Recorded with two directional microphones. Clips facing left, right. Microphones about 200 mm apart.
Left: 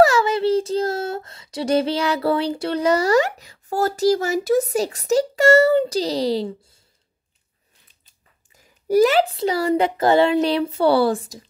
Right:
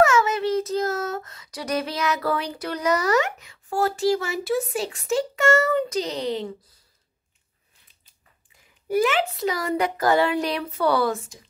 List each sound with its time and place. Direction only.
0.0 s speech: 30° left (ahead or behind)
8.8 s speech: 40° left (ahead or behind)